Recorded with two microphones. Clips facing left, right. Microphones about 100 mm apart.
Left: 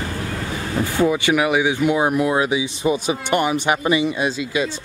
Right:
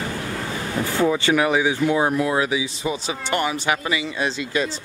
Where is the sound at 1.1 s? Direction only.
10° left (ahead or behind).